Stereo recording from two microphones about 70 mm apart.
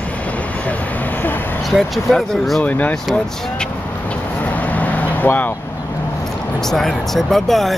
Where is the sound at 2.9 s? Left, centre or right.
Centre.